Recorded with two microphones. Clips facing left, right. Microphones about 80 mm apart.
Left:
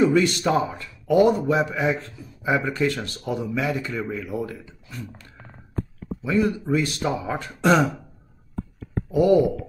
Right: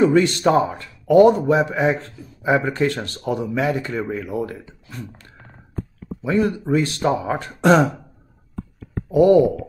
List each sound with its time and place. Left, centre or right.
0.0 s a man's voice: right
9.1 s a man's voice: right